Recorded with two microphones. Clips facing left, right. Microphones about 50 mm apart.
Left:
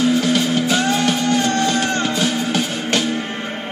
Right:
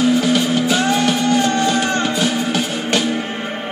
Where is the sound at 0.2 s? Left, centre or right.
Centre.